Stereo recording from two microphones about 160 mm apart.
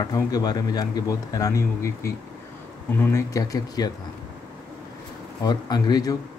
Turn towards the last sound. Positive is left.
turn(degrees=25)  # may be behind; listen again after turning